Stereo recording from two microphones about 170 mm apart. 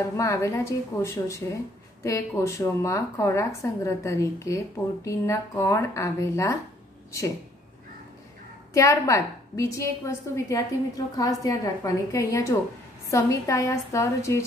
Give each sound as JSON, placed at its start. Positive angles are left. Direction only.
{"t": 0.2, "sound": "speech", "side_deg": 15}
{"t": 8.7, "sound": "a woman's voice", "side_deg": 20}